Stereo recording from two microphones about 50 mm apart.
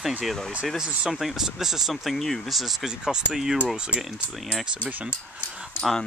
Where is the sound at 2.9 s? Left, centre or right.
Centre.